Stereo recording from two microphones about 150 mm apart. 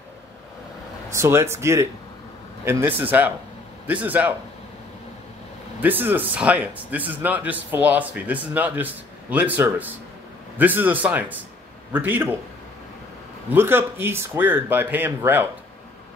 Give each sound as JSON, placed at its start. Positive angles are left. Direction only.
{"t": 1.1, "sound": "a man's voice", "side_deg": -20}
{"t": 5.8, "sound": "a man's voice", "side_deg": -10}
{"t": 13.5, "sound": "a man's voice", "side_deg": -15}